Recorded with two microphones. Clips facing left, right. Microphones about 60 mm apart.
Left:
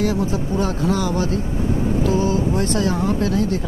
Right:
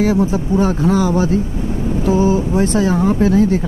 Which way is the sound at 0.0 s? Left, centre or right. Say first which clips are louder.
Right 5 dB; right.